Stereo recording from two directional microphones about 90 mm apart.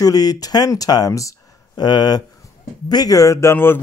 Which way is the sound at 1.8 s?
50° left (ahead or behind).